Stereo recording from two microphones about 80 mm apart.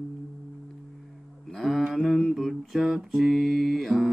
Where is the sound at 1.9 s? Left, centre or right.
Centre.